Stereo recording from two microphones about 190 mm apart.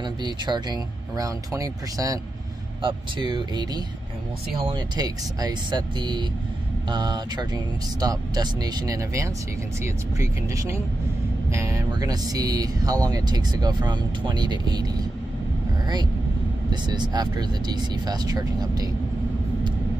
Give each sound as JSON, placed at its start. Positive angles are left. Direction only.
{"t": 0.0, "sound": "speech", "side_deg": -25}
{"t": 16.7, "sound": "speech", "side_deg": -25}